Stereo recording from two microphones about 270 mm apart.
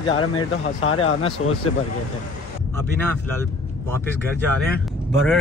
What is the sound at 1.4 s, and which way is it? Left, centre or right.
Speech, left.